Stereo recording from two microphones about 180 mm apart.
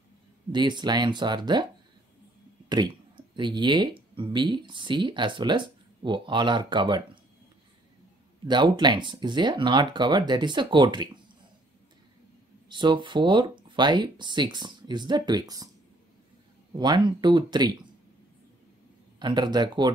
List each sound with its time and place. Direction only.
0.5 s speech: 25° right (ahead or behind)
2.7 s speech: 25° right (ahead or behind)
8.5 s speech: 25° right (ahead or behind)
12.6 s speech: 25° right (ahead or behind)
16.7 s speech: 25° right (ahead or behind)
19.1 s speech: 25° right (ahead or behind)